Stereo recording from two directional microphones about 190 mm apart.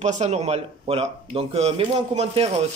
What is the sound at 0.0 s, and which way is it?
Speech, 35° right (ahead or behind).